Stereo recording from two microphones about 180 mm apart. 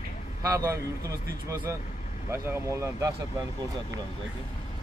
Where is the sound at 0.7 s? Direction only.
20° right (ahead or behind).